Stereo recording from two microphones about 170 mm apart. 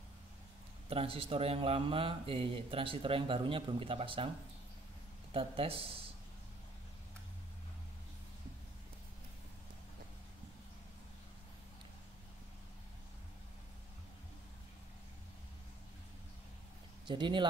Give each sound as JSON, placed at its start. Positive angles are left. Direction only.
{"t": 0.8, "sound": "speech", "side_deg": -35}
{"t": 5.3, "sound": "speech", "side_deg": -35}
{"t": 17.1, "sound": "speech", "side_deg": -25}